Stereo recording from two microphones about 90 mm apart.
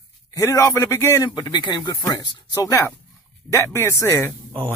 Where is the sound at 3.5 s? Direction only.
30° left (ahead or behind).